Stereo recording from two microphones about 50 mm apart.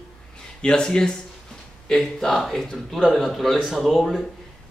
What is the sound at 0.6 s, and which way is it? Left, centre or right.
Speech, centre.